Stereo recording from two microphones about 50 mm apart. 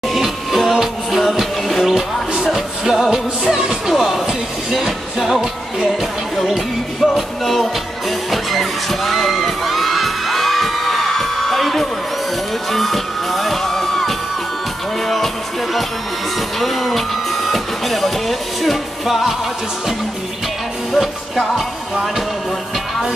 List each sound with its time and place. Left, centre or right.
0.1 s music: centre
20.9 s music: centre